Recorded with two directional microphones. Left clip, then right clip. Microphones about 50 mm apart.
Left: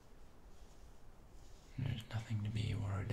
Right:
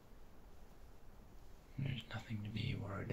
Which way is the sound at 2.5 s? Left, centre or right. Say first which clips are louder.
Right 2 dB; centre.